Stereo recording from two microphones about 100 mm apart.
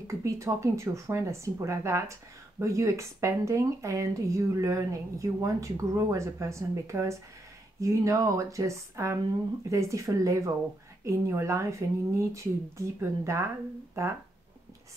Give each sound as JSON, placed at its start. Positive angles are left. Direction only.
{"t": 0.0, "sound": "speech", "side_deg": -30}